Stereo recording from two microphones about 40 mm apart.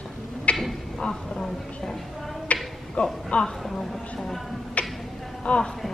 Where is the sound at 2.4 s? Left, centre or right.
Left.